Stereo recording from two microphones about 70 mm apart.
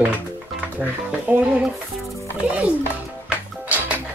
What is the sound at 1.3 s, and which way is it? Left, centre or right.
Speech, right.